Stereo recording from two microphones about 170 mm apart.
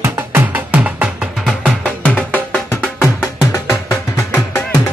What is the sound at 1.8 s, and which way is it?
Music, 10° left (ahead or behind).